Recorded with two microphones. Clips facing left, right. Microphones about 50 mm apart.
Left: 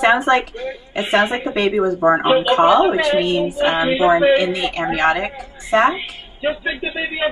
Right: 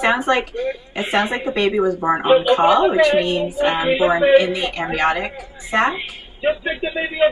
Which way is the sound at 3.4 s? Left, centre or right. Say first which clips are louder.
Left 1 dB; left.